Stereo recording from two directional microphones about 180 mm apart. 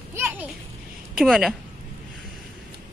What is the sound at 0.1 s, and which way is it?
Children playing, 15° right (ahead or behind).